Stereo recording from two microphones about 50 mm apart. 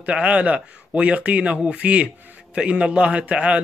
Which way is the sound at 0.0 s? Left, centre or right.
Right.